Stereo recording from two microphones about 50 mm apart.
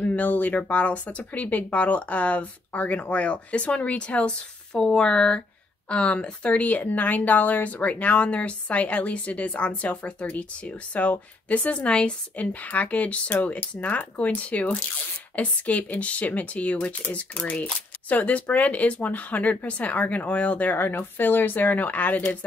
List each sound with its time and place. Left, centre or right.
0.0 s speech: left
20.7 s speech: left